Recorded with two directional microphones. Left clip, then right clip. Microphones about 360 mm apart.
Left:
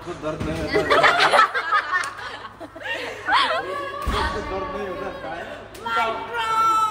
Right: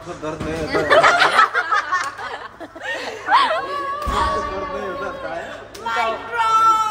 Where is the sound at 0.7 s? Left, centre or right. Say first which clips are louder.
Right 4 dB; right.